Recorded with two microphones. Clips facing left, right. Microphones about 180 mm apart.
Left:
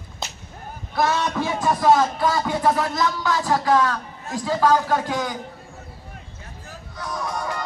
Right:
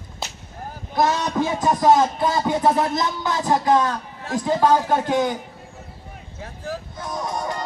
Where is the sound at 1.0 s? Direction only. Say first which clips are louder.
Right 1 dB; 20° right (ahead or behind).